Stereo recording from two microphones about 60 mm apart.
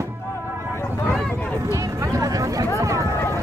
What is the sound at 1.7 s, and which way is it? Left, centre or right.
Music, right.